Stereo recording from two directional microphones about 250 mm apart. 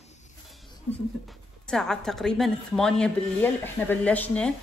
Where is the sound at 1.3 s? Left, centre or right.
Centre.